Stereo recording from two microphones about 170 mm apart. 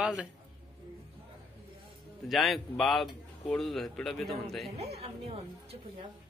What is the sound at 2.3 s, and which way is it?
Speech, centre (ahead or behind).